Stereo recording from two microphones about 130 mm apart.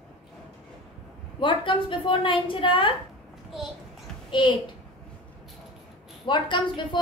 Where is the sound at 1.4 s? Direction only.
40° left (ahead or behind).